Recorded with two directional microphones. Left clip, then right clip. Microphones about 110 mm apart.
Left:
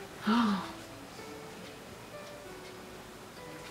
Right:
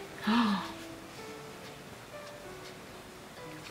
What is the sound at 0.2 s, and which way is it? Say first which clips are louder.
Speech: even; 5° right (ahead or behind).